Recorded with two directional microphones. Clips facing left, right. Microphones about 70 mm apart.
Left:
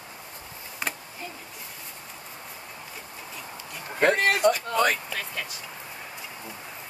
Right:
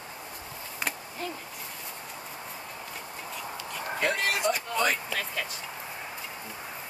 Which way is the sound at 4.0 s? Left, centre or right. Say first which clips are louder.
Left 7 dB; left.